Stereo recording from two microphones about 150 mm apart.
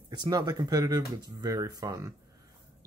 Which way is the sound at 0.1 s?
30° right (ahead or behind).